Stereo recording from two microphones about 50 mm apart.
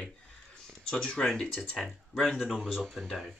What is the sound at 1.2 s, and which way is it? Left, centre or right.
Speech, centre.